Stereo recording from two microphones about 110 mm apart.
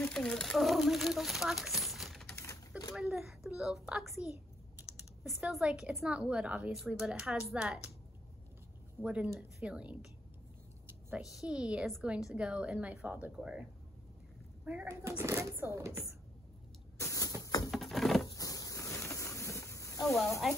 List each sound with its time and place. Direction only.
0.1 s speech: 5° left (ahead or behind)
2.3 s typewriter: 30° left (ahead or behind)
2.9 s a woman's voice: centre (ahead or behind)
9.0 s a woman's voice: 10° right (ahead or behind)
11.1 s a woman's voice: 5° right (ahead or behind)
14.9 s speech: 25° right (ahead or behind)
17.0 s a sound: 30° left (ahead or behind)
17.4 s patter: 35° left (ahead or behind)
17.6 s a sound: centre (ahead or behind)
18.2 s a sound: 30° left (ahead or behind)